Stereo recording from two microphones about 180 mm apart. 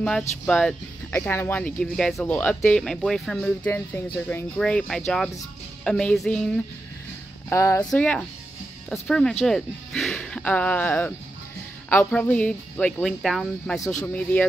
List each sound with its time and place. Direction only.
0.5 s speech: 5° left (ahead or behind)
7.4 s speech: 15° left (ahead or behind)
7.9 s speech: 5° left (ahead or behind)